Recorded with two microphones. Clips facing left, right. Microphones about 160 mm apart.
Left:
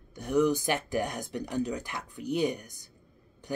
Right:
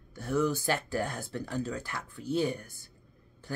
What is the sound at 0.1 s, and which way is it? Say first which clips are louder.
Speech: left 4 dB; 15° left (ahead or behind).